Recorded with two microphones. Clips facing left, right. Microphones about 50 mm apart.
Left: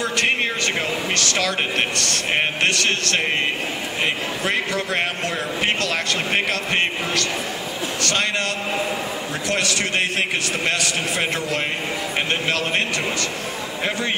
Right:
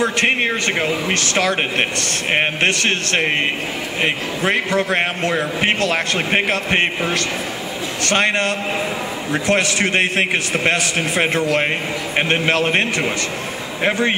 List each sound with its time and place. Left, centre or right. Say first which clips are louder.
0.0 s speech: right 4 dB; right